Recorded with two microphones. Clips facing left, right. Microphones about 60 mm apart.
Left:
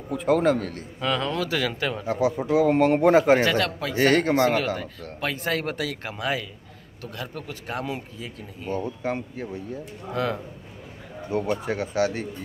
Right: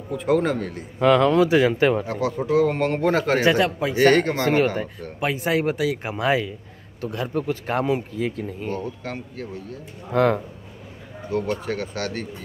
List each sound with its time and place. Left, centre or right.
0.1 s a man's voice: centre
0.9 s speech: right
1.4 s speech: right
2.0 s speech: centre
3.4 s speech: centre
4.0 s a man's voice: centre
5.2 s speech: centre
6.0 s speech: right
8.7 s speech: centre
10.1 s speech: right
11.3 s speech: centre